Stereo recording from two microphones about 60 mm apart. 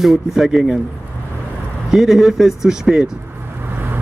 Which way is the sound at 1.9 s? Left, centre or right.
Centre.